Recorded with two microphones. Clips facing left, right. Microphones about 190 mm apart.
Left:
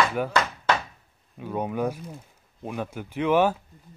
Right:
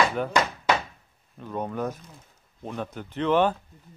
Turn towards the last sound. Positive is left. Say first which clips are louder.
# left 1 dB
turn(degrees=10)  # may be behind; listen again after turning